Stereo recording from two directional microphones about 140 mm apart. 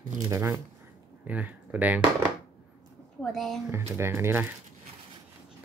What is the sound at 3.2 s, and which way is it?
Speech, centre (ahead or behind).